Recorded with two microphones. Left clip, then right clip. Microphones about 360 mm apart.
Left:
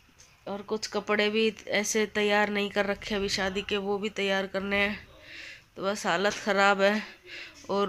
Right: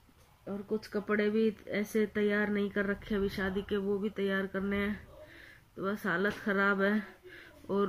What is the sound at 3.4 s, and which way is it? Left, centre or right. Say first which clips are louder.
Speech: left 5 dB; left.